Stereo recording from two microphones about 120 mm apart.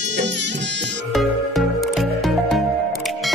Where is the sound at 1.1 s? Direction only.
Centre (ahead or behind).